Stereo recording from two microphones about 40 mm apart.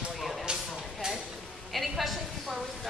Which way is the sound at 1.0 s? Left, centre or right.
Centre.